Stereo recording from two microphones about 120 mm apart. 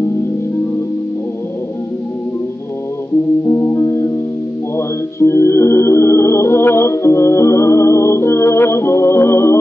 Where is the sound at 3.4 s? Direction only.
20° left (ahead or behind).